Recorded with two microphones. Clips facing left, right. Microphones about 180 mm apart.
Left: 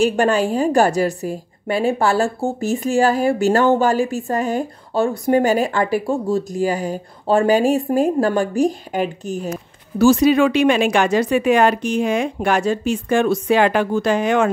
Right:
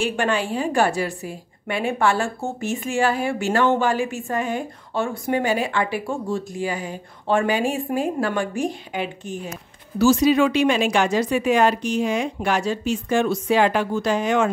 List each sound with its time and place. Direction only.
0.0 s a woman's voice: 40° left (ahead or behind)
9.9 s a woman's voice: 55° left (ahead or behind)